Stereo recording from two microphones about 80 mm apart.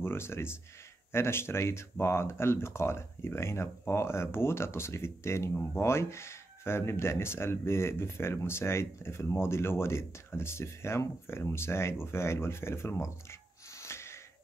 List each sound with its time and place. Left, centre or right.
0.0 s speech: left